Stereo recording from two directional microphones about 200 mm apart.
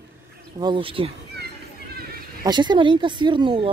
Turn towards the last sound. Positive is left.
turn(degrees=-25)  # may be behind; listen again after turning